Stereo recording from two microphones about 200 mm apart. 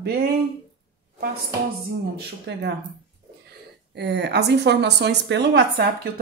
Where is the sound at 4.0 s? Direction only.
55° right (ahead or behind).